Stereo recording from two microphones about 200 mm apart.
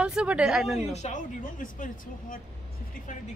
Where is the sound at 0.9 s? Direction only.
35° left (ahead or behind).